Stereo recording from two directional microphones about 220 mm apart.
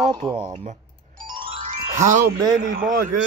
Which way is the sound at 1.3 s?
30° right (ahead or behind).